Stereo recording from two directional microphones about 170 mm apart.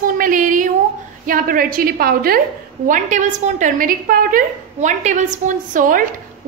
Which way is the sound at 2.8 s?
50° right (ahead or behind).